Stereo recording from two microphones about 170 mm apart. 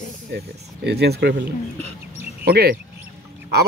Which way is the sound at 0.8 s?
75° right (ahead or behind).